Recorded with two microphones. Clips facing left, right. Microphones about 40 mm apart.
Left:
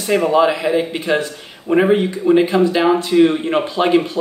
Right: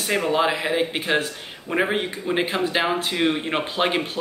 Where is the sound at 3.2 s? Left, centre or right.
Centre.